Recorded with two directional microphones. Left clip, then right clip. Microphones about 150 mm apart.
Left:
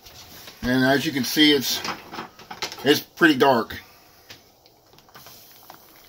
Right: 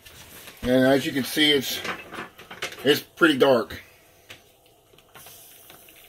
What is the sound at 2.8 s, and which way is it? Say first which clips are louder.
Speech: left 2 dB; 60° left (ahead or behind).